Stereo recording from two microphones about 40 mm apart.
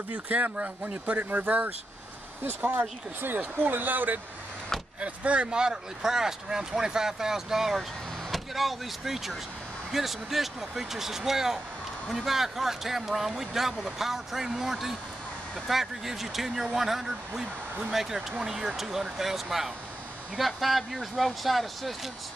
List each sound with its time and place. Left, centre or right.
0.1 s speech: right
5.0 s speech: right
5.5 s speech: centre
18.8 s speech: centre